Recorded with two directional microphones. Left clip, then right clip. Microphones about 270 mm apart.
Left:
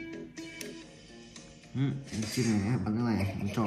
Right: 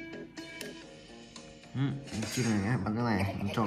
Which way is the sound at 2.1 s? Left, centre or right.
Right.